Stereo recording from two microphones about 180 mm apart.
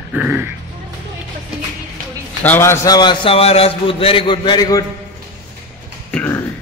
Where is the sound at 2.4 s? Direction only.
10° left (ahead or behind).